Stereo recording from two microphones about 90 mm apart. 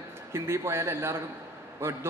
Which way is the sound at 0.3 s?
30° right (ahead or behind).